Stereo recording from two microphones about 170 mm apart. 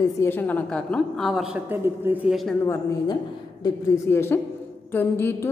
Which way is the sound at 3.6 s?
15° left (ahead or behind).